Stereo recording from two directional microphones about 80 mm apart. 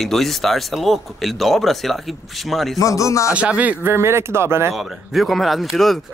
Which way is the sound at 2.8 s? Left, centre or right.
Left.